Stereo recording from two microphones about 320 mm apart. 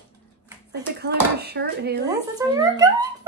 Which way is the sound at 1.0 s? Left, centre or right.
Right.